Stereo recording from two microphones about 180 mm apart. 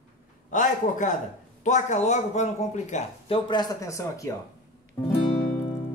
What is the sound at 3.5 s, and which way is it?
Speech, 20° left (ahead or behind).